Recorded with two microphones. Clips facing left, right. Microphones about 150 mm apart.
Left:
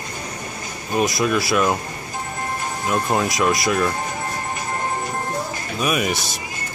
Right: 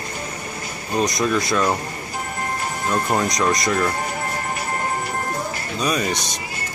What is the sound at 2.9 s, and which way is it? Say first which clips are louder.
Speech: left 1 dB; 5° left (ahead or behind).